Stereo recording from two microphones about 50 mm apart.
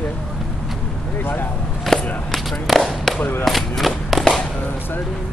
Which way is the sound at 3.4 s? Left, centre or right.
Centre.